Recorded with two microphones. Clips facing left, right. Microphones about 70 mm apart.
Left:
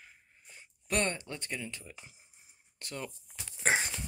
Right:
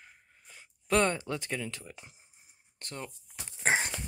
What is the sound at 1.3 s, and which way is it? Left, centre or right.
Speech, right.